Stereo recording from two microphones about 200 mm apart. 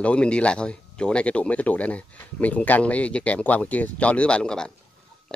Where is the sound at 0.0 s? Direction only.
5° left (ahead or behind).